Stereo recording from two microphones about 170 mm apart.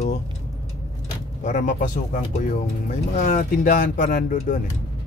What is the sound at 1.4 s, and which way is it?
Speech, 45° left (ahead or behind).